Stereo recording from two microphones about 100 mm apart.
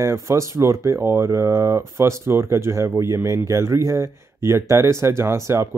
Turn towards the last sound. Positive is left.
turn(degrees=-30)  # may be behind; listen again after turning